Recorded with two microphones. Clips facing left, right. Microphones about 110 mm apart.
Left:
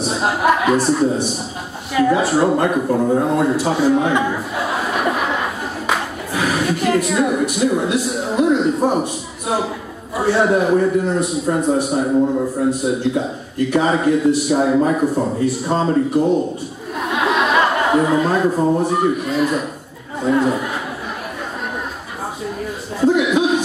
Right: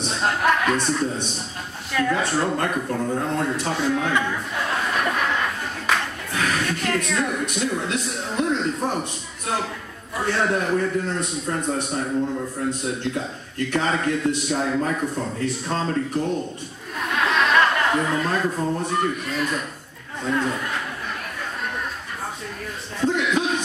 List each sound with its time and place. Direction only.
0.0 s a sound: 10° left (ahead or behind)
2.0 s a man's voice: 10° left (ahead or behind)
2.9 s a man's voice: 25° left (ahead or behind)
3.3 s a man's voice: 10° left (ahead or behind)
3.9 s a sound: 15° left (ahead or behind)
8.8 s a man's voice: 10° left (ahead or behind)
12.1 s a man's voice: 30° left (ahead or behind)
12.6 s a man's voice: 10° left (ahead or behind)
15.0 s a man's voice: 30° left (ahead or behind)
15.3 s a man's voice: 10° left (ahead or behind)
17.0 s a sound: 10° left (ahead or behind)
18.5 s a man's voice: 30° left (ahead or behind)
18.9 s a man's voice: 10° left (ahead or behind)
22.9 s a sound: 10° left (ahead or behind)